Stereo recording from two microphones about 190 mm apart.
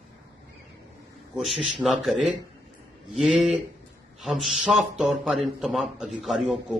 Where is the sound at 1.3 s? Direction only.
Centre (ahead or behind).